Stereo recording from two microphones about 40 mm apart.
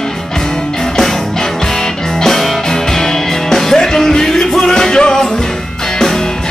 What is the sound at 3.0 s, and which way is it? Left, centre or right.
Music, centre.